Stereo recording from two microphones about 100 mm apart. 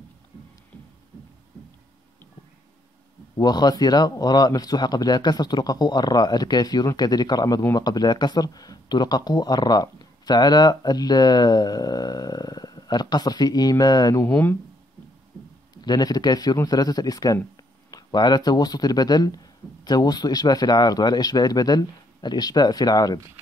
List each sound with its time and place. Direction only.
3.3 s speech: 45° left (ahead or behind)
14.2 s speech: 20° left (ahead or behind)
15.8 s speech: 45° left (ahead or behind)